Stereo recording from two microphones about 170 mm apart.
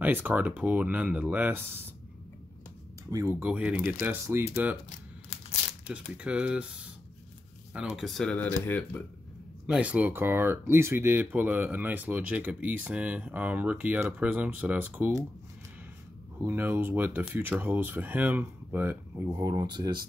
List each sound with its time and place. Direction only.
0.0 s speech: 10° right (ahead or behind)
3.1 s speech: 20° right (ahead or behind)
4.8 s crumpling: 40° left (ahead or behind)
6.1 s speech: 5° right (ahead or behind)
7.7 s speech: centre (ahead or behind)
9.7 s speech: 10° right (ahead or behind)
16.3 s speech: 15° right (ahead or behind)
19.4 s speech: 20° right (ahead or behind)